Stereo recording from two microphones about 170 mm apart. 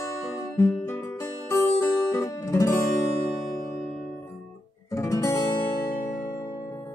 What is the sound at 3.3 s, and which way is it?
Music, 5° right (ahead or behind).